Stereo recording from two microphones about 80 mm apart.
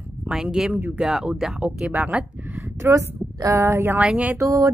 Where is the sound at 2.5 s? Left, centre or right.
Right.